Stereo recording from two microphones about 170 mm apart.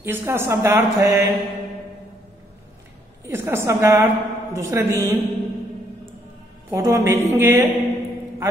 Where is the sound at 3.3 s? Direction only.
15° right (ahead or behind).